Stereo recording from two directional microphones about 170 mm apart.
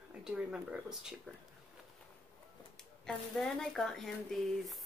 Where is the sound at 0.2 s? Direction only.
5° right (ahead or behind).